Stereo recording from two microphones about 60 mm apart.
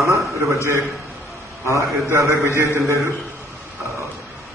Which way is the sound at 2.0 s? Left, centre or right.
Right.